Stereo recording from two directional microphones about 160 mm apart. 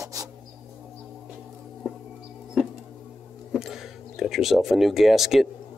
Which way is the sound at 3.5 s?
Centre (ahead or behind).